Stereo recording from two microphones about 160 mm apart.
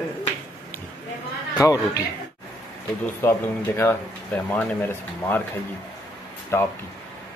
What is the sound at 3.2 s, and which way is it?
Speech, 15° left (ahead or behind).